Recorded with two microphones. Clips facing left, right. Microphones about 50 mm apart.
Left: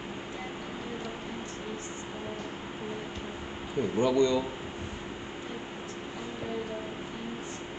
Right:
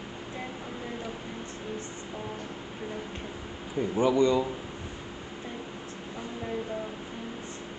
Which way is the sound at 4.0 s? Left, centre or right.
Centre.